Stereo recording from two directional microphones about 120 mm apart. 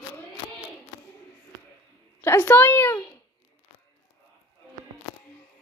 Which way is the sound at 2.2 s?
20° left (ahead or behind).